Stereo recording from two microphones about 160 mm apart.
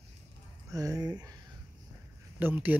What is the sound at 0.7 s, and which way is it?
Speech, 20° right (ahead or behind).